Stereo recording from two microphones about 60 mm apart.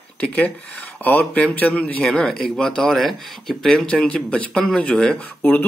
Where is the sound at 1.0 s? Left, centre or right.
Left.